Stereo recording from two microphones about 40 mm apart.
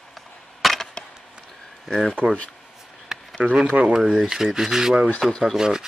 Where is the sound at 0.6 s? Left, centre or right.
Centre.